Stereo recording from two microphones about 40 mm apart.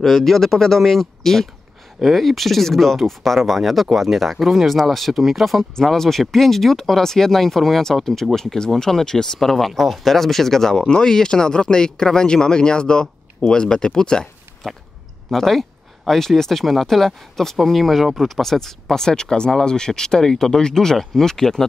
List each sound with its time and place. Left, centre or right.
0.0 s speech: centre
5.8 s speech: centre